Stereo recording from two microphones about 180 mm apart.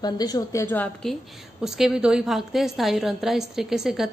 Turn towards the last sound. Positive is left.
turn(degrees=0)  # may be behind; listen again after turning